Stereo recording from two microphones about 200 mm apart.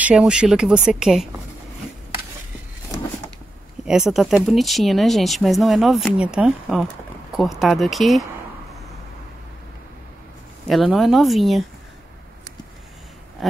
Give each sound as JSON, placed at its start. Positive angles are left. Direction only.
{"t": 0.0, "sound": "speech", "side_deg": -5}
{"t": 3.8, "sound": "speech", "side_deg": -5}
{"t": 10.7, "sound": "speech", "side_deg": 0}
{"t": 13.4, "sound": "a sound", "side_deg": 0}